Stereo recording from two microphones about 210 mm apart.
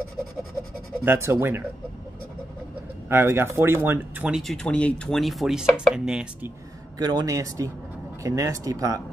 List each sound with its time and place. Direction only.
1.0 s speech: 10° right (ahead or behind)
3.1 s speech: 10° right (ahead or behind)
7.0 s speech: 20° right (ahead or behind)